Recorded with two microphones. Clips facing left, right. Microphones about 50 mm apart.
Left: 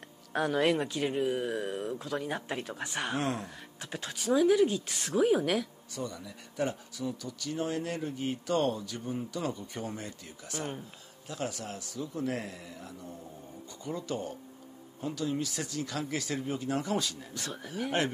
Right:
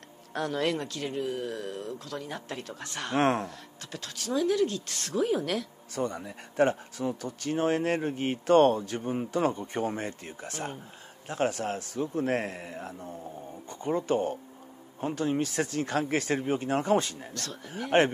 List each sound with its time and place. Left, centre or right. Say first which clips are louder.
0.3 s speech: left 2 dB; centre
3.2 s speech: right 10 dB; right
3.4 s speech: right 2 dB; centre
5.9 s speech: right 7 dB; right
17.3 s speech: even; centre
17.9 s speech: right 8 dB; right